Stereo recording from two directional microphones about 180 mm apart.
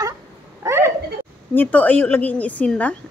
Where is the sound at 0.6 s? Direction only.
15° right (ahead or behind).